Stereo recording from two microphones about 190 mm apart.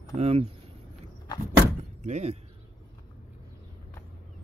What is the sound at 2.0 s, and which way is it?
Speech, 35° right (ahead or behind).